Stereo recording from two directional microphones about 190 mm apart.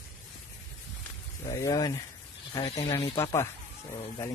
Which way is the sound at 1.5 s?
20° left (ahead or behind).